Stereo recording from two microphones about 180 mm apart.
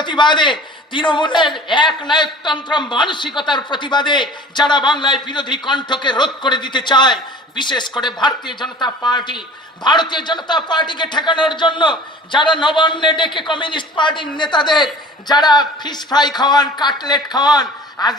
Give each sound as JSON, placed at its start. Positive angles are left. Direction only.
{"t": 0.0, "sound": "a man's voice", "side_deg": 25}